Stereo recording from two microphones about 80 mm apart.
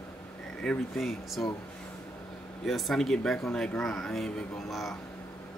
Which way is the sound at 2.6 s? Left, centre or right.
Centre.